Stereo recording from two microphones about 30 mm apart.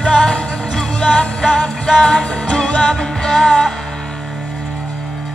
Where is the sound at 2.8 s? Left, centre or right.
Centre.